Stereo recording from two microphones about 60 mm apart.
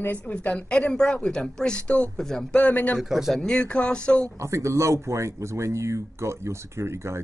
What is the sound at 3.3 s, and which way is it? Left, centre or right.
Speech, centre.